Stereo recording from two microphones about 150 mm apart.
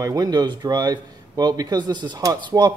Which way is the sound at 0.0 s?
25° right (ahead or behind).